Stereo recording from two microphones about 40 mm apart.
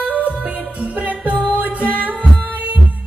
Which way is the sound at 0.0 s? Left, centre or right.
Right.